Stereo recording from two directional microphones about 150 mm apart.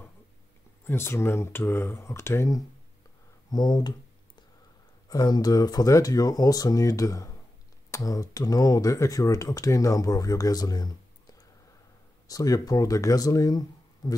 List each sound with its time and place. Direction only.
0.8 s speech: 15° left (ahead or behind)
5.0 s speech: 25° left (ahead or behind)